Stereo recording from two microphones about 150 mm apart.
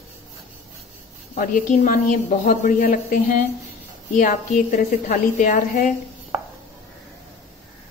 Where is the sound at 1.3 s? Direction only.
70° left (ahead or behind).